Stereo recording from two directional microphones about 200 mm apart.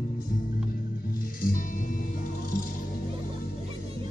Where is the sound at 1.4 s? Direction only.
45° left (ahead or behind).